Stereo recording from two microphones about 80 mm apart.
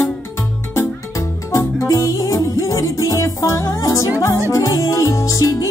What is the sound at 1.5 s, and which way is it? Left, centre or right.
Music, left.